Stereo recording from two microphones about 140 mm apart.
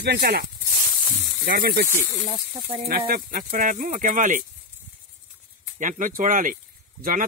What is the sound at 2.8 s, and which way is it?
Speech, 90° right.